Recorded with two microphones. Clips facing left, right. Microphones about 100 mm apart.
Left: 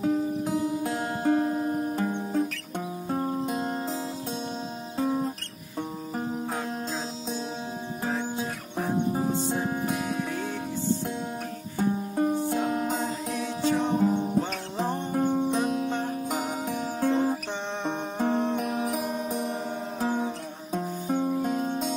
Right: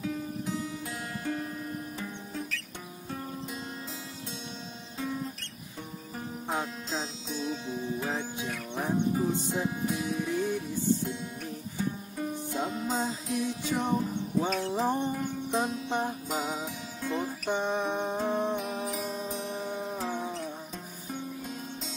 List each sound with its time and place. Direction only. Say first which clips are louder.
0.0 s music: left 8 dB; 45° left (ahead or behind)
4.9 s music: left 8 dB; 40° left (ahead or behind)
9.5 s music: left 3 dB; 55° left (ahead or behind)
11.8 s music: left 9 dB; 55° left (ahead or behind)
14.8 s music: left 1 dB; 15° right (ahead or behind)
15.0 s music: left 7 dB; 50° left (ahead or behind)
17.5 s music: right 2 dB; 10° right (ahead or behind)
18.6 s music: left 5 dB; 55° left (ahead or behind)
20.7 s music: left 12 dB; 55° left (ahead or behind)